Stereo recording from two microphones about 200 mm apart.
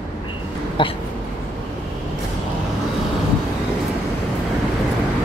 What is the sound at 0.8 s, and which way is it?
Speech, 25° left (ahead or behind).